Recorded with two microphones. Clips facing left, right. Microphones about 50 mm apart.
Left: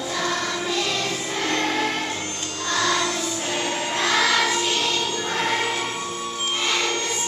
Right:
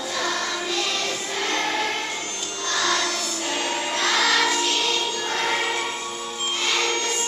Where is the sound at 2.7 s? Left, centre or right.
Centre.